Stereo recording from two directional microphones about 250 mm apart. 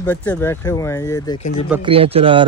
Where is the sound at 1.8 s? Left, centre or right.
Right.